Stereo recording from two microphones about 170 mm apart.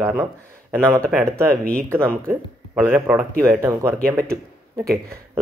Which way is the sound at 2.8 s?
15° right (ahead or behind).